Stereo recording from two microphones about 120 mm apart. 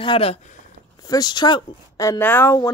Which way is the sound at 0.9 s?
35° left (ahead or behind).